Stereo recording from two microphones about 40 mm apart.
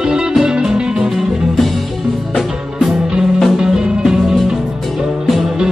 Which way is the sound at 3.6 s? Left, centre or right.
Centre.